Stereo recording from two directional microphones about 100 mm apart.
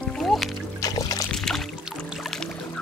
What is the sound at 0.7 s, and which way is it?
Music, 40° left (ahead or behind).